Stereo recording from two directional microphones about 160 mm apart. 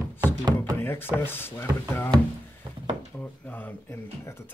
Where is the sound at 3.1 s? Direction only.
10° left (ahead or behind).